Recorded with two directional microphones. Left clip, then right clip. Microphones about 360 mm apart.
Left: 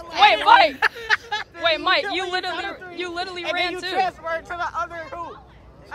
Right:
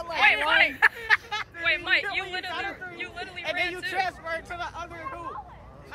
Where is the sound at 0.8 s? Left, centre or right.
Left.